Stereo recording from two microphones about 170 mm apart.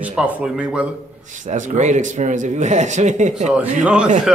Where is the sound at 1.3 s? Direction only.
45° right (ahead or behind).